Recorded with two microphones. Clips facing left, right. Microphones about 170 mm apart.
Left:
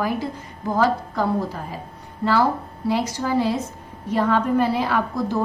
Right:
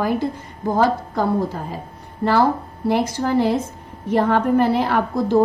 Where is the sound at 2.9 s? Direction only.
55° right (ahead or behind).